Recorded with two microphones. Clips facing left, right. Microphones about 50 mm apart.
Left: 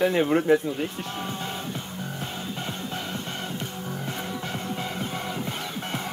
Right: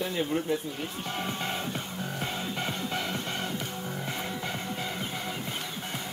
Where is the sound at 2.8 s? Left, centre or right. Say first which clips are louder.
Even; right.